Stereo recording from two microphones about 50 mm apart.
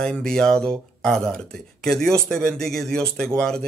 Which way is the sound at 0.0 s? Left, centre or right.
Centre.